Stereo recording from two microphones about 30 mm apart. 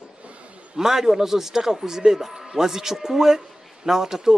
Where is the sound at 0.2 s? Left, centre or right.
Right.